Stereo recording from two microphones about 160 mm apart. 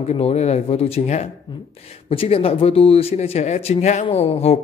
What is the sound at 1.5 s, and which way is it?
A man's voice, 30° left (ahead or behind).